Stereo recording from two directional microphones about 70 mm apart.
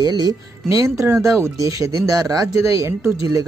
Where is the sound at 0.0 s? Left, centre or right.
Right.